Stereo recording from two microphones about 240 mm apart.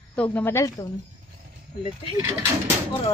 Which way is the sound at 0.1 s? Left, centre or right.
Centre.